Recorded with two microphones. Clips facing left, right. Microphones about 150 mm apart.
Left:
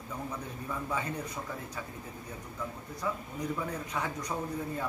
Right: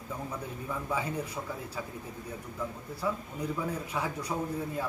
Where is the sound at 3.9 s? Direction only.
10° right (ahead or behind).